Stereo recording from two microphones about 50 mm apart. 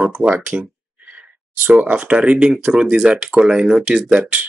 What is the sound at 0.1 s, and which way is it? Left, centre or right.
Speech, right.